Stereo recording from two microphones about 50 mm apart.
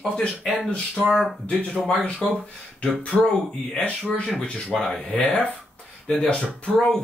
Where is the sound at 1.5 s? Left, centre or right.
Left.